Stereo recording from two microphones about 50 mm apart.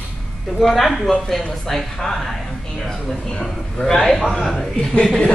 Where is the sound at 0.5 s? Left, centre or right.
Centre.